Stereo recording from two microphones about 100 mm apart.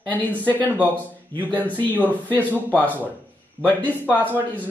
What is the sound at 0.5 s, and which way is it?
Speech, 15° left (ahead or behind).